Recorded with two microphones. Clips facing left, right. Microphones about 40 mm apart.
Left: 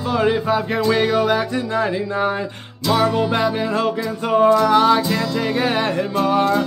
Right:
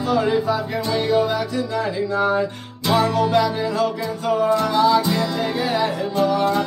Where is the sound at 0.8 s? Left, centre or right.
Left.